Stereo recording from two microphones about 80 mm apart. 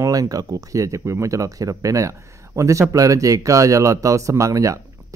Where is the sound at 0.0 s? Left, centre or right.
Right.